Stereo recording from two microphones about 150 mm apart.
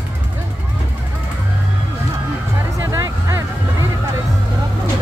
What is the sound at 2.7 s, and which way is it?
Music, 20° right (ahead or behind).